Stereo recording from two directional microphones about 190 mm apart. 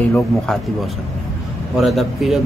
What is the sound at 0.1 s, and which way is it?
Speech, 5° left (ahead or behind).